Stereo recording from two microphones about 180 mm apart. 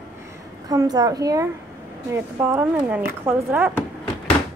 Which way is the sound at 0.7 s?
20° right (ahead or behind).